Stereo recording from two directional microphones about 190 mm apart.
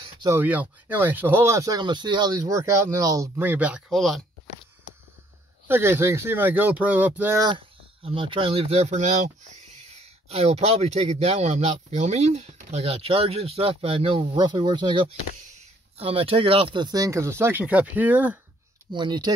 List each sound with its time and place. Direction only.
0.0 s a sound: 20° right (ahead or behind)
0.4 s speech: 10° right (ahead or behind)
5.7 s speech: 10° right (ahead or behind)
7.4 s speech: 30° right (ahead or behind); by 18.4 s 10° right (ahead or behind)
18.9 s speech: 25° right (ahead or behind)